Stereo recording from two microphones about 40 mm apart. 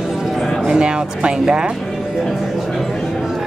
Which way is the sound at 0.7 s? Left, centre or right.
Centre.